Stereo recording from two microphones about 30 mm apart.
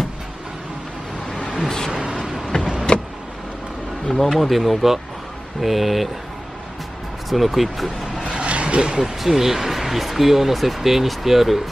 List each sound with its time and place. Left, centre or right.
1.9 s a sound: right
2.5 s vehicle: left
4.1 s speech: centre
7.2 s speech: centre
8.3 s a sound: right
9.3 s speech: centre